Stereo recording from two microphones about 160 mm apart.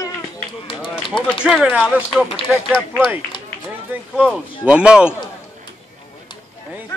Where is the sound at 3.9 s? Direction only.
10° right (ahead or behind).